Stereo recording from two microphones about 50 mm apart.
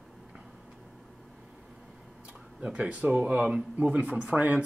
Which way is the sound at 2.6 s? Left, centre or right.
Right.